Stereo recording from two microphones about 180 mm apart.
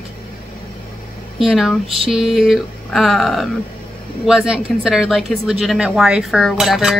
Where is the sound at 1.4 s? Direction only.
Centre (ahead or behind).